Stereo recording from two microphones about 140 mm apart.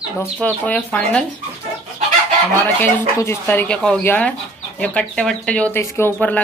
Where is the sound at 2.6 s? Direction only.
15° left (ahead or behind).